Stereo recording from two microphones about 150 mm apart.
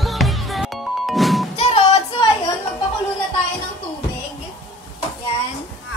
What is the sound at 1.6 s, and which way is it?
Music, 45° left (ahead or behind).